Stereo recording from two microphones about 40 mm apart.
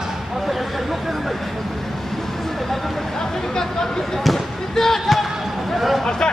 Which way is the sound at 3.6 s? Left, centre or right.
Centre.